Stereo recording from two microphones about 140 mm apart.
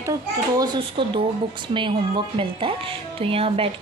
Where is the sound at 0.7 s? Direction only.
35° right (ahead or behind).